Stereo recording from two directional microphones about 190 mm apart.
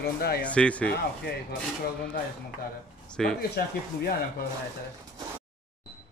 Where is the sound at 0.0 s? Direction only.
55° left (ahead or behind).